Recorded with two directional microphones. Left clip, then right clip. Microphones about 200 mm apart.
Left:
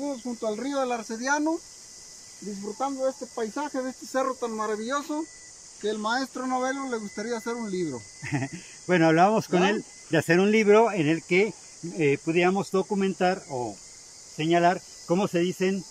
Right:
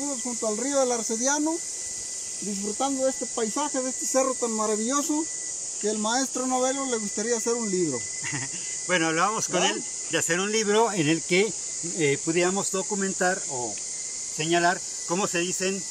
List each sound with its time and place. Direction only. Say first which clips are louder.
0.5 s speech: right 3 dB; 10° right (ahead or behind)
2.8 s speech: right 2 dB; 15° right (ahead or behind)
8.3 s speech: left 3 dB; 25° left (ahead or behind)
10.7 s speech: left 1 dB; 5° left (ahead or behind)
14.4 s speech: left 1 dB; 10° left (ahead or behind)